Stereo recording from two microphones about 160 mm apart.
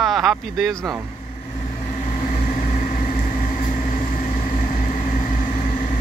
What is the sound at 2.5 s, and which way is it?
Vehicle, 60° left (ahead or behind).